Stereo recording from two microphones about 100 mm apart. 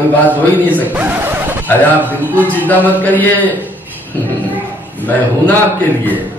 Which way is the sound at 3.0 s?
15° left (ahead or behind).